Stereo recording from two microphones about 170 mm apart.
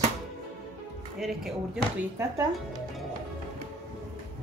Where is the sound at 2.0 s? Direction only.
15° right (ahead or behind).